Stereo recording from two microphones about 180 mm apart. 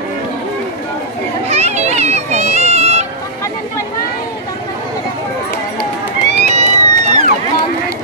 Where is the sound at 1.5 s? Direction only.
40° right (ahead or behind).